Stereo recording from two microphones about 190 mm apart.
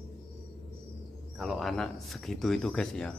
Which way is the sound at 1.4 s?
Centre (ahead or behind).